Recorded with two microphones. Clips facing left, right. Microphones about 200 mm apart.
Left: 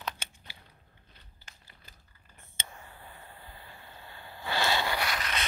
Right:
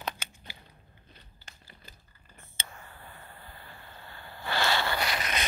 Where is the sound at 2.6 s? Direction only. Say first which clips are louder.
Even; 15° left (ahead or behind).